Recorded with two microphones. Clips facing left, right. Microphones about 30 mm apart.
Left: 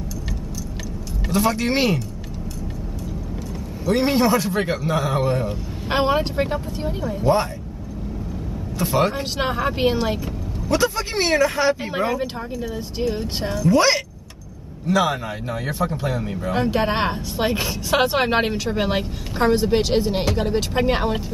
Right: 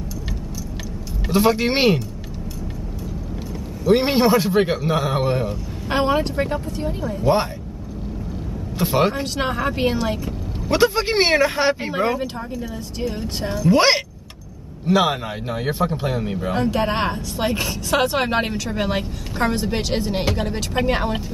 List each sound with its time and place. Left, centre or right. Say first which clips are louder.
1.3 s a man's voice: right 2 dB; right
3.8 s a man's voice: right 2 dB; right
5.9 s speech: even; centre
8.7 s speech: right 1 dB; centre
9.1 s speech: even; centre
10.7 s a man's voice: right 3 dB; right
13.1 s speech: left 1 dB; centre
13.7 s a man's voice: right 1 dB; right
16.5 s speech: left 1 dB; centre